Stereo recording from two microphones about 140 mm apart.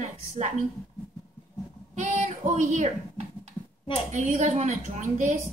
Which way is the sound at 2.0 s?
55° right (ahead or behind).